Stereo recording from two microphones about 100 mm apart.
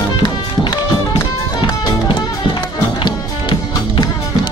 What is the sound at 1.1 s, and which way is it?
Music, 45° left (ahead or behind).